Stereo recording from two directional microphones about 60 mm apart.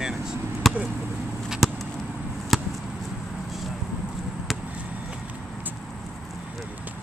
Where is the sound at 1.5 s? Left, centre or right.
Centre.